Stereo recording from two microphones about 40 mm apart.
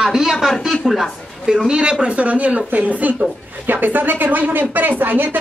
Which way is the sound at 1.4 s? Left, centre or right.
Centre.